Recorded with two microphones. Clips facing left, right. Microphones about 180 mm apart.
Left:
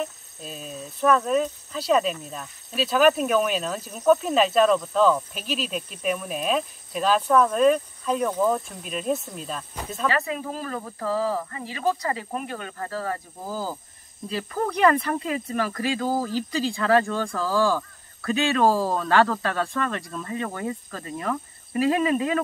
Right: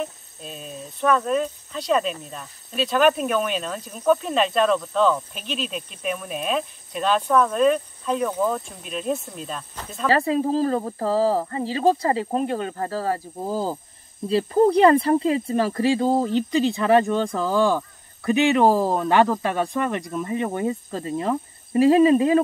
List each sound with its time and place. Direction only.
0.0 s speech: centre (ahead or behind)
10.0 s speech: 30° right (ahead or behind)